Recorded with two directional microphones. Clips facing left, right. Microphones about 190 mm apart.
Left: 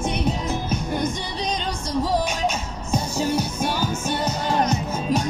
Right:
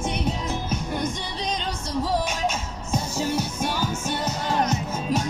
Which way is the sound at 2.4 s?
Centre (ahead or behind).